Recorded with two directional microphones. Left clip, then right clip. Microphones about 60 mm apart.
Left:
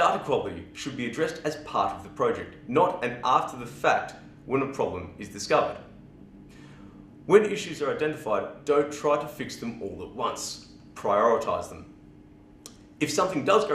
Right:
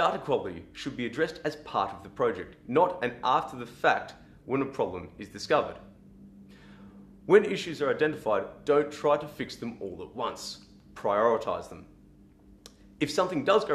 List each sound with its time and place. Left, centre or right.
0.0 s speech: left
7.2 s speech: left
13.0 s speech: left